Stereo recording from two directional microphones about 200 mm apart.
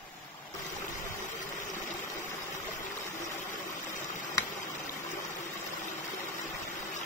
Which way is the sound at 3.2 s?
40° left (ahead or behind).